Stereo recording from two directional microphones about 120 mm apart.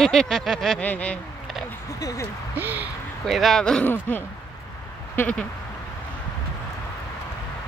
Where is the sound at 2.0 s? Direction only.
30° left (ahead or behind).